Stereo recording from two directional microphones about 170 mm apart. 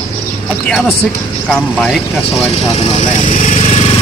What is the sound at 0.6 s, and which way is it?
Speech, centre (ahead or behind).